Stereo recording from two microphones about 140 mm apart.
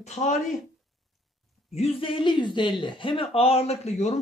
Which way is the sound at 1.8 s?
45° left (ahead or behind).